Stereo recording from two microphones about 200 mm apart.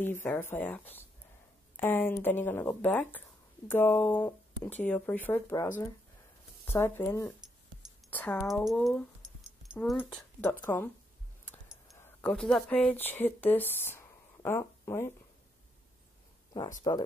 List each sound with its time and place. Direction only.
0.0 s speech: 10° left (ahead or behind)
11.9 s speech: 5° left (ahead or behind)
16.8 s speech: 20° left (ahead or behind)